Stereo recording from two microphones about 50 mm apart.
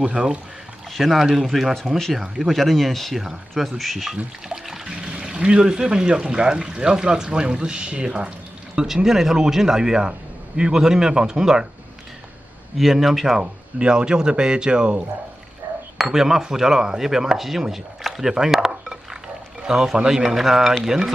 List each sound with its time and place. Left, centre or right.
0.0 s speech: centre
0.9 s speech: centre
3.2 s speech: centre
4.5 s speech: centre
8.7 s a man's voice: centre
12.7 s speech: centre
13.4 s a man's voice: centre
16.0 s a man's voice: centre
18.3 s chopping: centre
19.6 s a man's voice: centre